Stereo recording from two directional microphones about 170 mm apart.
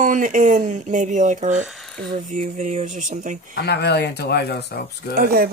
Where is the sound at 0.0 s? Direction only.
50° right (ahead or behind).